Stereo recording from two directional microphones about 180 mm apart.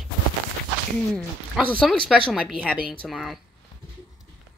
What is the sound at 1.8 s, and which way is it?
Speech, centre (ahead or behind).